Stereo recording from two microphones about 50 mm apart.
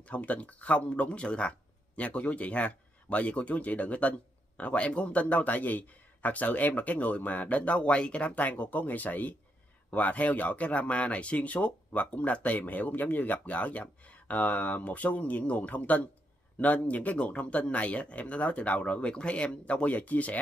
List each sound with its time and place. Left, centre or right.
0.1 s speech: left